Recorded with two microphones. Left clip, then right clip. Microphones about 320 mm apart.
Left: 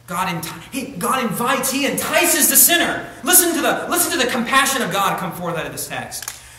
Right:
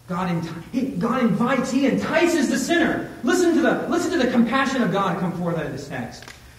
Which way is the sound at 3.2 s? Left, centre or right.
Left.